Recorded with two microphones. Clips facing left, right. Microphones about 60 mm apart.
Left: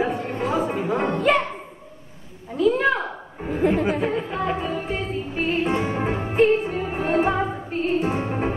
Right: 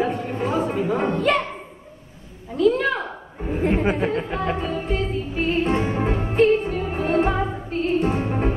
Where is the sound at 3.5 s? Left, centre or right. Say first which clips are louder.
Left 1 dB; left.